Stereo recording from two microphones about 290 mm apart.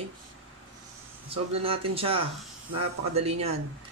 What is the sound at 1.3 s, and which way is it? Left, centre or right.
Speech, centre.